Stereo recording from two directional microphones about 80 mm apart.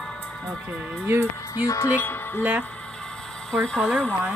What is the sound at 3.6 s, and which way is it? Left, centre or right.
Speech, centre.